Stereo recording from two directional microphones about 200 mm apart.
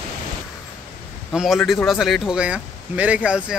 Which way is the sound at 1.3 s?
Centre (ahead or behind).